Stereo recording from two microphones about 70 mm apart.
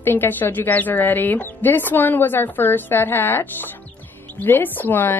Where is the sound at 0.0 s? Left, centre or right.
Left.